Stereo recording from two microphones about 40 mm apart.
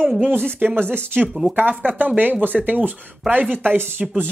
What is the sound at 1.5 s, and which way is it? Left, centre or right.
Speech, right.